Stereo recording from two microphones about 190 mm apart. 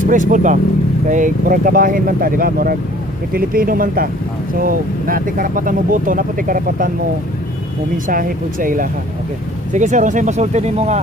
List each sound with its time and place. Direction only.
0.0 s speech: 45° right (ahead or behind)
8.1 s speech: 45° right (ahead or behind)